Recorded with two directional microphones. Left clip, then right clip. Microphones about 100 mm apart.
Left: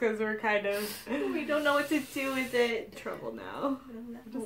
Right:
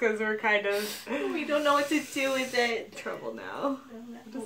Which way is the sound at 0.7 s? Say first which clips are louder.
Right 3 dB; 5° right (ahead or behind).